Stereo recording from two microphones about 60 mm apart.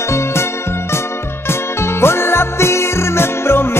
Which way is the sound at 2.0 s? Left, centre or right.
Left.